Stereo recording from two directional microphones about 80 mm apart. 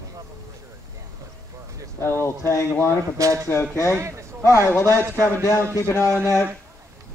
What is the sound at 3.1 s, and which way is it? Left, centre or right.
Speech, right.